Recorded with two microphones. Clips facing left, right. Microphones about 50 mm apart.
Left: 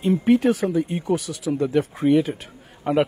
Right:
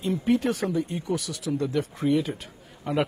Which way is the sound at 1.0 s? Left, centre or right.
Left.